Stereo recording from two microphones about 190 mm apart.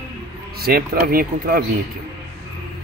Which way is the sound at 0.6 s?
50° right (ahead or behind).